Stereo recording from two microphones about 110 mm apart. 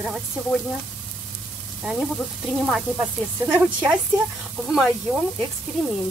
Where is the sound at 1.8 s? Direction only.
5° right (ahead or behind).